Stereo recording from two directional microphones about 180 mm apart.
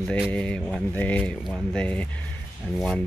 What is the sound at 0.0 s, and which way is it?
Speech, 5° left (ahead or behind).